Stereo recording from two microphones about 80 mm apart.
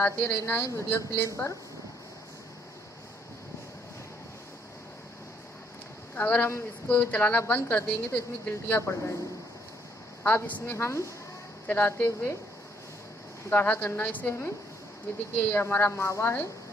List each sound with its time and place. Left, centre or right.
0.0 s a woman's voice: left
0.4 s a woman's voice: left
0.8 s a woman's voice: left
1.2 s a woman's voice: left
6.1 s a woman's voice: left
10.2 s a woman's voice: left
11.6 s a woman's voice: left
13.5 s a woman's voice: left